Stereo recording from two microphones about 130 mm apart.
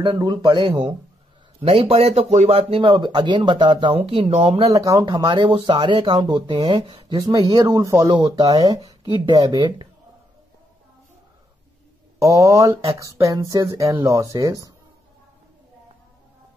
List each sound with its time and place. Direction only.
0.0 s speech: 35° right (ahead or behind)
4.6 s speech: 25° right (ahead or behind)
5.0 s speech: 35° right (ahead or behind)
12.2 s speech: 25° right (ahead or behind)